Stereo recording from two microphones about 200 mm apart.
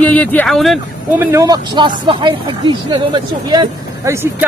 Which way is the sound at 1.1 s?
15° right (ahead or behind).